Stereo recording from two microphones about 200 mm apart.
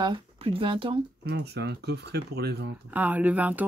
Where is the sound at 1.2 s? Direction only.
55° right (ahead or behind).